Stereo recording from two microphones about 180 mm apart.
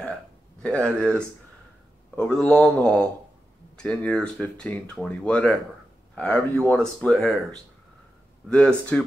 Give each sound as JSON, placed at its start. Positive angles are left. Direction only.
{"t": 0.6, "sound": "speech", "side_deg": 5}